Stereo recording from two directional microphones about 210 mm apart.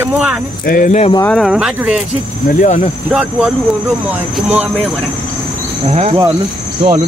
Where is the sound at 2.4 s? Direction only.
35° left (ahead or behind).